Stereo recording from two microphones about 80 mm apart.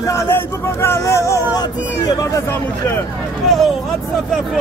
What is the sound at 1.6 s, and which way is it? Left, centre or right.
Speech, left.